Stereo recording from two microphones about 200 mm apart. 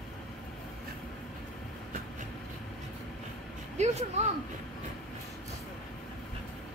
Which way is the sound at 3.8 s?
35° right (ahead or behind).